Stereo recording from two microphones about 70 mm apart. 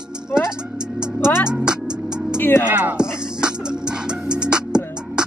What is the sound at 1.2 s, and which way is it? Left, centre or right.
Music, left.